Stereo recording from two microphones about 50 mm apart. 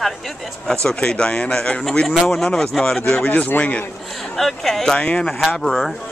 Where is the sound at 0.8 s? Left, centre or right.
Centre.